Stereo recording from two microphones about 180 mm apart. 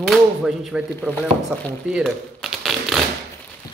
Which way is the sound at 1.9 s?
5° right (ahead or behind).